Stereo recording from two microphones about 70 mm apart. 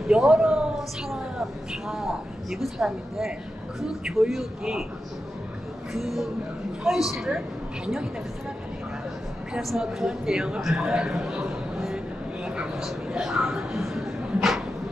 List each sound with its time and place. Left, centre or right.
0.1 s a woman's voice: centre
5.9 s speech: centre
9.5 s speech: centre
12.4 s a sound: centre